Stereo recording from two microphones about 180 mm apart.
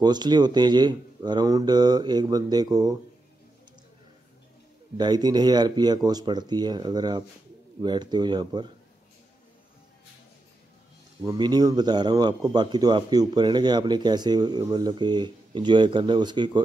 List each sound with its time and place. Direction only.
0.0 s speech: 25° right (ahead or behind)
4.9 s speech: 25° right (ahead or behind)
11.2 s speech: 25° right (ahead or behind)